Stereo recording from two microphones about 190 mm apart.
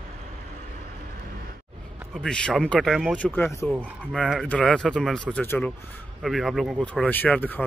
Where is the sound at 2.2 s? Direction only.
5° left (ahead or behind).